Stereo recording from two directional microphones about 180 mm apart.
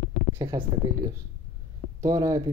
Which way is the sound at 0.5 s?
20° right (ahead or behind).